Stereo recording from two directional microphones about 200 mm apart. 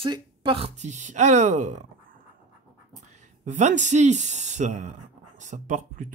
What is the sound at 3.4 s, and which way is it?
Speech, 35° right (ahead or behind).